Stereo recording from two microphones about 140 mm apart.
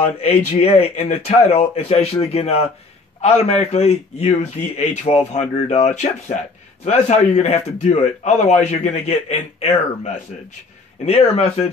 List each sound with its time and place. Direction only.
0.0 s a man's voice: 50° left (ahead or behind)